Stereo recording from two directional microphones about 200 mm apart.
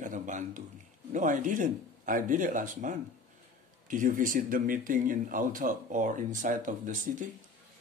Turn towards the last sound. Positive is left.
turn(degrees=-40)  # may be behind; listen again after turning